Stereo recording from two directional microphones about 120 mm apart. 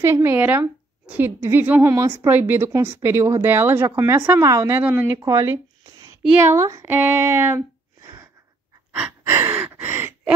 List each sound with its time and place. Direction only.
0.0 s a woman's voice: 20° right (ahead or behind)
5.2 s a sound: 25° right (ahead or behind)
6.3 s speech: 20° right (ahead or behind)
9.2 s gasp: 15° right (ahead or behind)